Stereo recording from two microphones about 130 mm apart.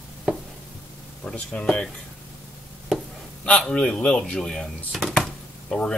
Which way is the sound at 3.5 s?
5° left (ahead or behind).